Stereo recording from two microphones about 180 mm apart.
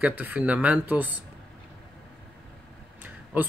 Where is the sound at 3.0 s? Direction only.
10° right (ahead or behind).